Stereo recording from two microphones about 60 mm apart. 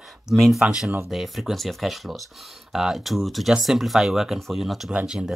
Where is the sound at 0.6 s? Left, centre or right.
Centre.